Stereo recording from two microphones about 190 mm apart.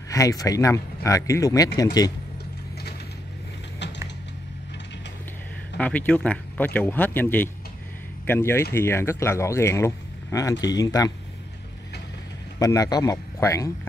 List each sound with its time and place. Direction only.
0.1 s speech: 15° left (ahead or behind)
3.8 s music: 65° left (ahead or behind)
5.8 s speech: 10° left (ahead or behind)
12.5 s speech: 15° left (ahead or behind)